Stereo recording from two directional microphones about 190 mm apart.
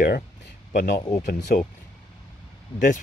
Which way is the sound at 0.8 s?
60° left (ahead or behind).